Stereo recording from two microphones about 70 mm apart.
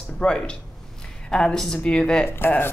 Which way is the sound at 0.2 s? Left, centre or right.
Centre.